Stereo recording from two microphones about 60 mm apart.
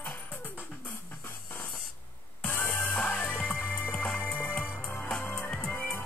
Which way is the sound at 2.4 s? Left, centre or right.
Left.